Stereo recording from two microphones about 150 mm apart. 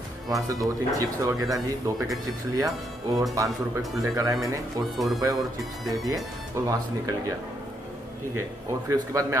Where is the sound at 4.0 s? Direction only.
25° right (ahead or behind).